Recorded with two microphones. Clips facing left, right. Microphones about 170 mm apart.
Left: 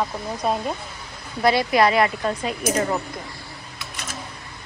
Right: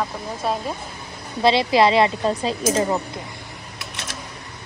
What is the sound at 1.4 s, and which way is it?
Speech, 25° right (ahead or behind).